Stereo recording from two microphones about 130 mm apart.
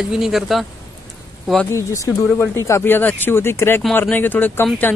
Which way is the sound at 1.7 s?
25° left (ahead or behind).